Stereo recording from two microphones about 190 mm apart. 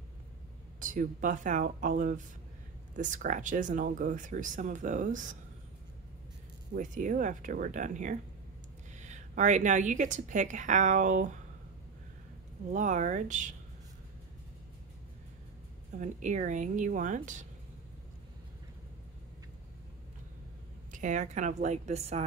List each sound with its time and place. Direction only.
0.7 s speech: 45° right (ahead or behind)
6.7 s a woman's voice: 45° right (ahead or behind)
12.7 s speech: 40° right (ahead or behind)
16.0 s speech: 40° right (ahead or behind)
20.9 s speech: 40° right (ahead or behind)